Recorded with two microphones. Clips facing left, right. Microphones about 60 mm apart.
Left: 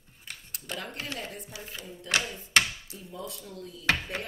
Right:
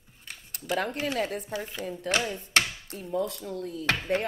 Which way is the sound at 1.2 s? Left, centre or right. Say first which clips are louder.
Right 10 dB; right.